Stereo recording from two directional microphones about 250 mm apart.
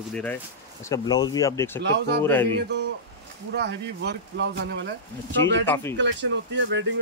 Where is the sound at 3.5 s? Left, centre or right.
Right.